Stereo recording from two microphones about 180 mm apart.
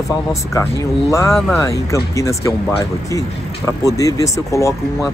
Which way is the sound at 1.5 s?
15° left (ahead or behind).